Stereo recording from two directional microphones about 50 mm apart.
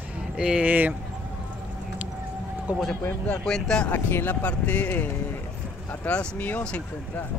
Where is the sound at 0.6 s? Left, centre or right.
Right.